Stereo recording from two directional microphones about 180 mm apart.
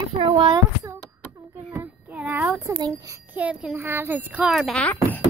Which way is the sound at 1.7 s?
10° right (ahead or behind).